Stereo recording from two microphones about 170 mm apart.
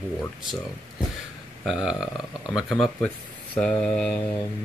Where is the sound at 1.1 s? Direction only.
Centre (ahead or behind).